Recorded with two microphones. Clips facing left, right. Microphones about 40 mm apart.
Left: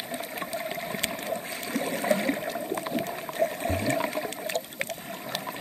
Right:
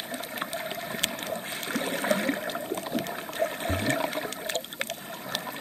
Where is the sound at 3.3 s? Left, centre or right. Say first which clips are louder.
Left 2 dB; right.